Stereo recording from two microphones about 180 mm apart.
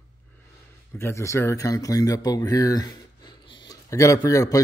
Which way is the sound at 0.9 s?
15° left (ahead or behind).